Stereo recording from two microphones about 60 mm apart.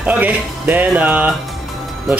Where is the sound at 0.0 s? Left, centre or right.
Right.